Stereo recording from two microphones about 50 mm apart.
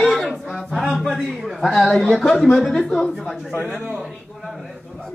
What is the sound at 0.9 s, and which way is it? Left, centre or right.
A man's voice, centre.